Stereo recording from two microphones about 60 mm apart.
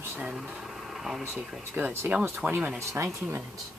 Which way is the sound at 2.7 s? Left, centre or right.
Right.